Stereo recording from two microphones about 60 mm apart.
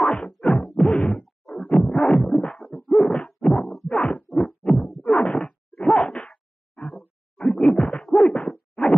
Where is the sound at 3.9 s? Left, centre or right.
Centre.